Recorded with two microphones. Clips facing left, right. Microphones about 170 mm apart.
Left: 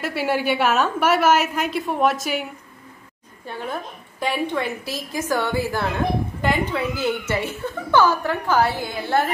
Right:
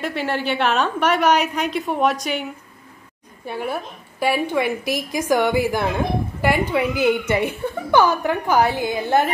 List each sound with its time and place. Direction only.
0.0 s a woman's voice: 10° left (ahead or behind)
3.4 s a woman's voice: 10° right (ahead or behind)